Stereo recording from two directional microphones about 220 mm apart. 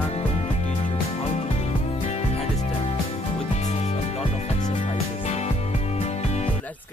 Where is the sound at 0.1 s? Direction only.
30° left (ahead or behind).